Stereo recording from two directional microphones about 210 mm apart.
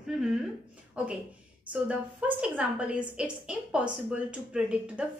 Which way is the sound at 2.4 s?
5° right (ahead or behind).